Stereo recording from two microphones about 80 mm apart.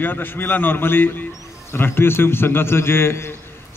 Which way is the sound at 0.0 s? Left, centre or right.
Left.